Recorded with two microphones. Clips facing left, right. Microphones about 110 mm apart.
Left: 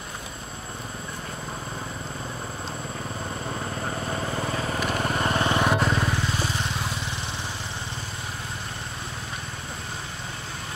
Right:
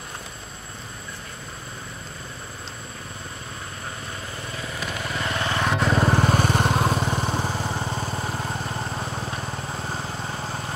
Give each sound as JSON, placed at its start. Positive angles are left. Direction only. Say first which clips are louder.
{"t": 4.4, "sound": "vehicle", "louder": "left 6 dB", "side_deg": 45}
{"t": 5.4, "sound": "vehicle", "louder": "left 1 dB", "side_deg": 20}
{"t": 5.7, "sound": "vehicle", "louder": "even", "side_deg": 0}
{"t": 5.9, "sound": "vehicle", "louder": "right 6 dB", "side_deg": -50}